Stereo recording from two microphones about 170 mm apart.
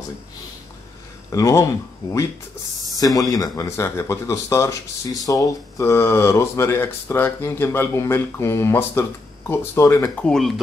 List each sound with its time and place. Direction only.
1.3 s speech: 20° left (ahead or behind)
2.9 s speech: 20° left (ahead or behind)
10.2 s a man's voice: centre (ahead or behind)